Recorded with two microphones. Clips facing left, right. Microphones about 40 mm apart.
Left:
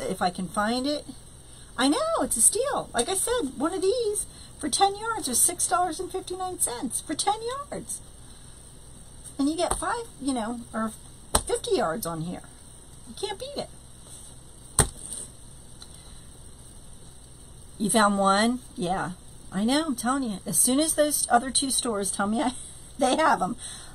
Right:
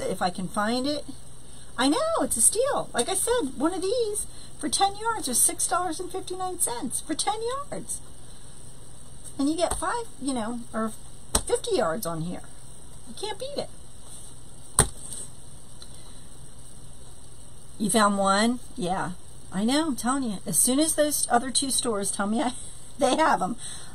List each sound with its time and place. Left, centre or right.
0.0 s a woman's voice: centre
9.4 s a woman's voice: centre
14.8 s chop: centre
17.7 s a woman's voice: centre